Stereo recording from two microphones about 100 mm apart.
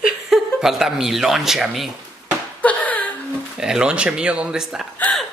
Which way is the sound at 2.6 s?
15° left (ahead or behind).